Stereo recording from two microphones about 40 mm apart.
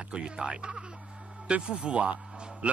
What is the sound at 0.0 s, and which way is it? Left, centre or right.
Speech, right.